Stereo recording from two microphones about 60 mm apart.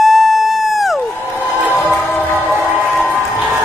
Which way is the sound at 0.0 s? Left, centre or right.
Centre.